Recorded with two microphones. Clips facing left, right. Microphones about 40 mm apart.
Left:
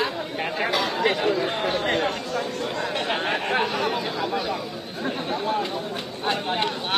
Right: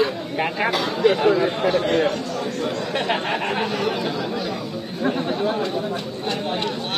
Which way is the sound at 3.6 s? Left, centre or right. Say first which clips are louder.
Right 2 dB; centre.